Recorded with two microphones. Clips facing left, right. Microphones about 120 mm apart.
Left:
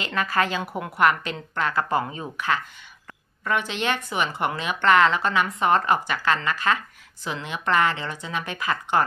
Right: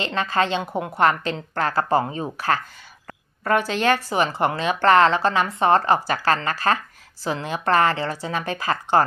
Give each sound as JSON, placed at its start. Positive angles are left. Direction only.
{"t": 0.0, "sound": "a woman's voice", "side_deg": -25}